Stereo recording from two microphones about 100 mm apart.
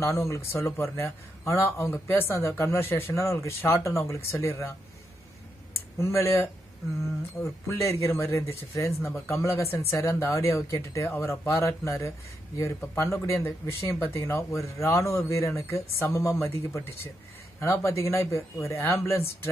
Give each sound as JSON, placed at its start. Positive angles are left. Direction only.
{"t": 0.0, "sound": "speech", "side_deg": 30}
{"t": 5.9, "sound": "speech", "side_deg": 30}